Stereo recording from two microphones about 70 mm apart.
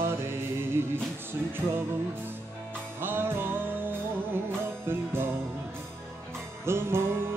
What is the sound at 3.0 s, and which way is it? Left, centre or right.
Music, right.